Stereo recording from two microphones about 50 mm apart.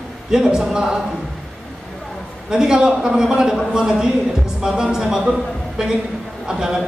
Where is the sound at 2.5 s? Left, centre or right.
Centre.